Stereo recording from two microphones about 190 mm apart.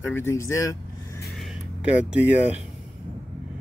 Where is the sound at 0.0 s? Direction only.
15° left (ahead or behind).